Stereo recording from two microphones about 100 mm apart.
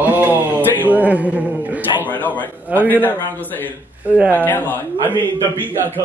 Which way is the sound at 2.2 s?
15° left (ahead or behind).